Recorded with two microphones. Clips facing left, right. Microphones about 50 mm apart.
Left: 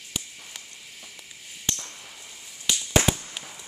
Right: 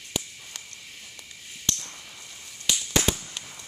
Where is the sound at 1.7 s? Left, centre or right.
Centre.